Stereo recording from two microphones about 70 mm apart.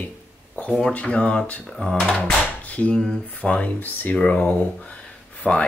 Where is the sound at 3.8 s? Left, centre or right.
Left.